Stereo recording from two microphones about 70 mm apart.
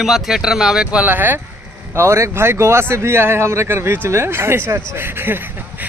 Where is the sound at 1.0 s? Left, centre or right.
Right.